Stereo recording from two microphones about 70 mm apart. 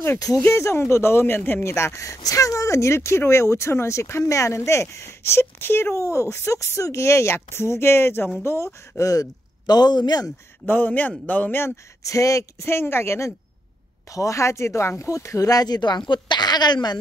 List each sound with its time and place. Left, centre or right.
0.4 s speech: left
9.0 s a man's voice: left
10.7 s a man's voice: left
12.0 s speech: left
12.6 s speech: left